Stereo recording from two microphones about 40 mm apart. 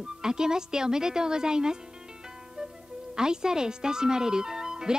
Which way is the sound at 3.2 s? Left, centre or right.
Centre.